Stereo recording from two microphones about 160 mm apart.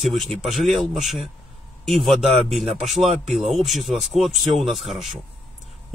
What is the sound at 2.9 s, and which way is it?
Speech, 40° right (ahead or behind).